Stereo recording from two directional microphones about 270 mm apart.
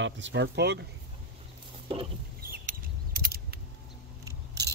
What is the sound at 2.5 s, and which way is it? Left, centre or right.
Rodents, right.